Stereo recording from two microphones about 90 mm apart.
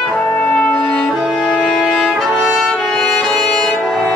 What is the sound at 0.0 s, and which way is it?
Brass instrument, 10° left (ahead or behind).